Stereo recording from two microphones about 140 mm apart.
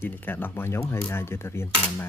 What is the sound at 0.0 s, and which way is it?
Cutlery, 15° left (ahead or behind).